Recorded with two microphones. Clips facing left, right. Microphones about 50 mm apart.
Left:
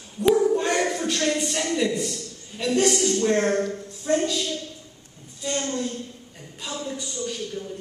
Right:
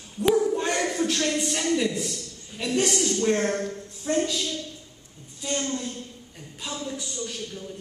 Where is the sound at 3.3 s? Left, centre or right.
Centre.